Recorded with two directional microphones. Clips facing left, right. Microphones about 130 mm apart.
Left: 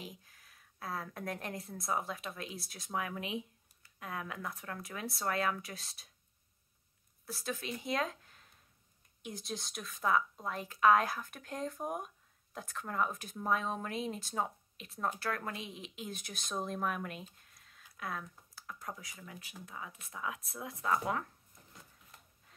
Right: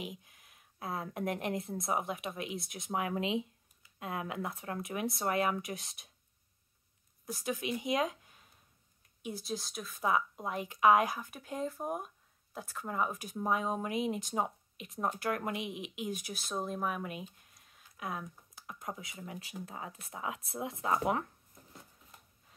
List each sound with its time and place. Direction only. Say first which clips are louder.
0.0 s a woman's voice: right 5 dB; 20° right (ahead or behind)
7.4 s speech: right 4 dB; 15° right (ahead or behind)
10.0 s a woman's voice: even; 15° right (ahead or behind)